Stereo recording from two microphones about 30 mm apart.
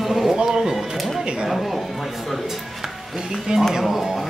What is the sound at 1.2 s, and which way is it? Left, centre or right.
Speech, right.